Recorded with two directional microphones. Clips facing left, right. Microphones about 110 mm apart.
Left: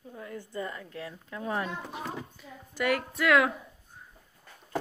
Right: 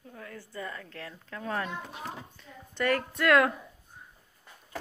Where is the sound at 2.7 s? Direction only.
10° left (ahead or behind).